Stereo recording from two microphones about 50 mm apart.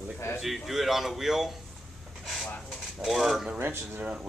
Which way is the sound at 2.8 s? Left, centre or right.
Centre.